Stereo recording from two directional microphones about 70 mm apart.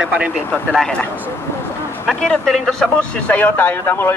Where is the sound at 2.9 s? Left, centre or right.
Left.